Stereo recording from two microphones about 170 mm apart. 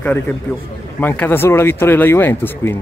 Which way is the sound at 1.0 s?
10° left (ahead or behind).